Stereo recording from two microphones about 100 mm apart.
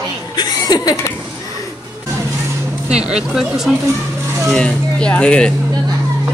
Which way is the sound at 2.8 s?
10° right (ahead or behind).